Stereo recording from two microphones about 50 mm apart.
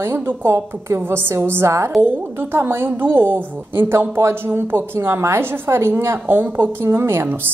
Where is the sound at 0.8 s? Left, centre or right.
Right.